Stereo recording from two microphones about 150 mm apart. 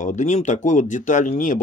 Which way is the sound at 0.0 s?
55° left (ahead or behind).